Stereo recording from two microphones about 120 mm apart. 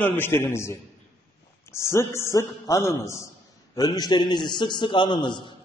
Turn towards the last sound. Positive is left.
turn(degrees=40)  # may be behind; listen again after turning